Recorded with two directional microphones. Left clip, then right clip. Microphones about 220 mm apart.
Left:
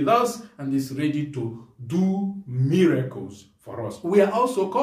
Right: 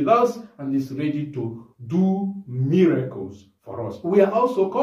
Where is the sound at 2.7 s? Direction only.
15° left (ahead or behind).